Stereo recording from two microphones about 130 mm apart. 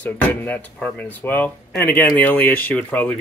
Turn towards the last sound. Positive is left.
turn(degrees=15)  # may be behind; listen again after turning